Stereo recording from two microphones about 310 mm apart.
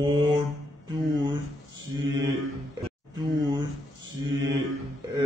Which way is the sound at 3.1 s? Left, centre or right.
Centre.